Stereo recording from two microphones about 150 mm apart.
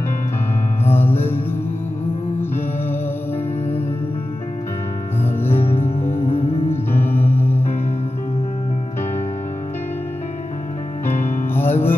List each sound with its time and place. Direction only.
0.9 s music: 15° left (ahead or behind)
5.5 s music: 40° left (ahead or behind)
6.9 s music: 15° left (ahead or behind)
11.5 s music: 15° left (ahead or behind)